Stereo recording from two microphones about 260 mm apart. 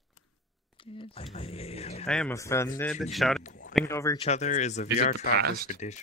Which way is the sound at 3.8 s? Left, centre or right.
Centre.